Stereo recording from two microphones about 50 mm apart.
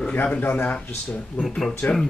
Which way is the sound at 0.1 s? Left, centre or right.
Left.